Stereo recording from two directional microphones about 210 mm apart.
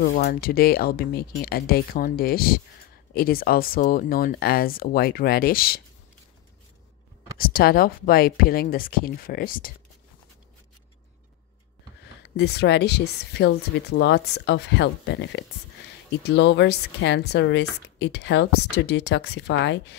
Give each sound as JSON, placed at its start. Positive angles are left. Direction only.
{"t": 0.1, "sound": "speech", "side_deg": 45}
{"t": 7.3, "sound": "speech", "side_deg": 45}
{"t": 12.4, "sound": "speech", "side_deg": 50}